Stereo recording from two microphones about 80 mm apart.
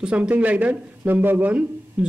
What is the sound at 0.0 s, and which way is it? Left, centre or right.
Speech, centre.